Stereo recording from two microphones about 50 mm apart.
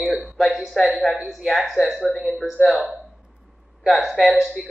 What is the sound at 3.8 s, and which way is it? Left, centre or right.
Speech, centre.